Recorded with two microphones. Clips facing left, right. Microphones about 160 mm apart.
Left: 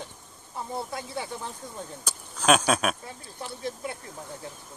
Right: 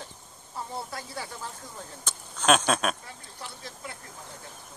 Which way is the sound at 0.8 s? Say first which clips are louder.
Left 4 dB; 20° left (ahead or behind).